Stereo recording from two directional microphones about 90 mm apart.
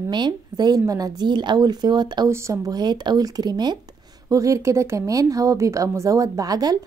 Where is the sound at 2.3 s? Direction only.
35° right (ahead or behind).